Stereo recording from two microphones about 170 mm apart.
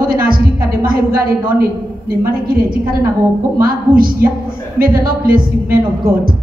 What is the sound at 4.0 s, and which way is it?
A woman's voice, 55° right (ahead or behind).